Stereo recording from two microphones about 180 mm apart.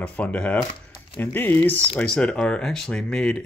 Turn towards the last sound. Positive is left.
turn(degrees=5)  # may be behind; listen again after turning